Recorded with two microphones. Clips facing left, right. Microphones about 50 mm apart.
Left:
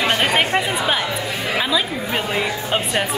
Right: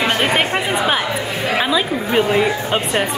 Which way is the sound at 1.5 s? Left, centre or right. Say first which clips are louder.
Right 3 dB; centre.